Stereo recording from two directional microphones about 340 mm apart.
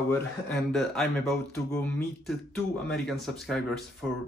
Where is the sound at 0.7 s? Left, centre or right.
Centre.